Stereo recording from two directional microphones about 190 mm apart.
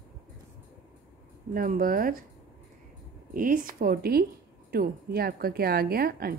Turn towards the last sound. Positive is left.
turn(degrees=-55)  # may be behind; listen again after turning